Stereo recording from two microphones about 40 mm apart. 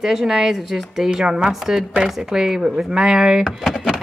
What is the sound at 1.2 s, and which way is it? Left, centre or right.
Speech, centre.